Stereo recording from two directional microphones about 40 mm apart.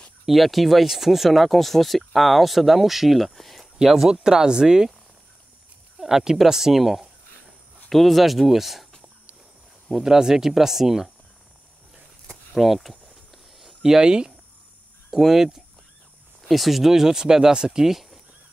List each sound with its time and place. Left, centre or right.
0.3 s speech: centre
5.9 s speech: centre
10.0 s speech: centre
12.5 s a sound: centre
15.0 s speech: centre